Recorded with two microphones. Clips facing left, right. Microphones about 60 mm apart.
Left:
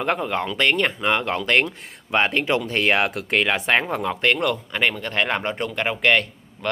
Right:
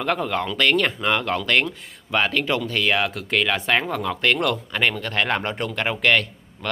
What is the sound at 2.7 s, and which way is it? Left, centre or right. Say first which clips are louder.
Speech: left 2 dB; left.